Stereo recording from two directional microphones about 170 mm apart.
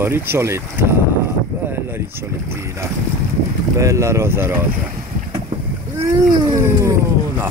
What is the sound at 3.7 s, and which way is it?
Speech, 15° right (ahead or behind).